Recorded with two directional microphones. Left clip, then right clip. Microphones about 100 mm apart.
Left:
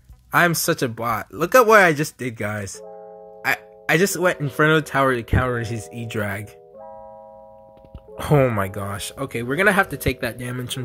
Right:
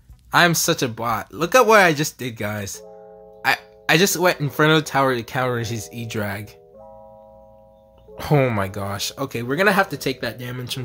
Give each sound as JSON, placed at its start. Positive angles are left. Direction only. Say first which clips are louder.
{"t": 0.3, "sound": "speech", "louder": "right 1 dB", "side_deg": 30}
{"t": 8.2, "sound": "speech", "louder": "left 1 dB", "side_deg": 20}
{"t": 8.8, "sound": "speech", "louder": "right 3 dB", "side_deg": 15}
{"t": 9.5, "sound": "speech", "louder": "even", "side_deg": 35}
{"t": 9.9, "sound": "speech", "louder": "left 1 dB", "side_deg": 50}